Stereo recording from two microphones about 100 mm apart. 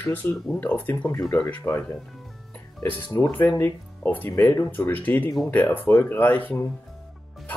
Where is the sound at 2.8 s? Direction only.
20° left (ahead or behind).